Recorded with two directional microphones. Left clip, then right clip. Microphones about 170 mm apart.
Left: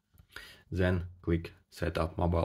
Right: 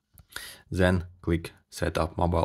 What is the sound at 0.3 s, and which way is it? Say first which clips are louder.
Speech: right 6 dB; 45° right (ahead or behind).